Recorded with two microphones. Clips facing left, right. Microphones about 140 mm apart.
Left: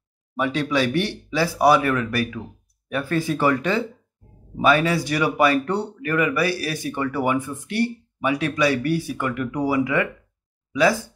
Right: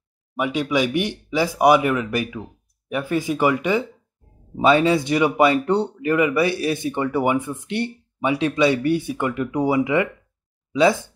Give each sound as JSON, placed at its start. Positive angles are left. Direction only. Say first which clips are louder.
{"t": 0.4, "sound": "speech", "louder": "right 1 dB", "side_deg": -15}